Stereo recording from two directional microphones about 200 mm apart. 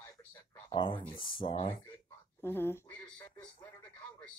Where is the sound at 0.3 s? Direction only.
25° left (ahead or behind).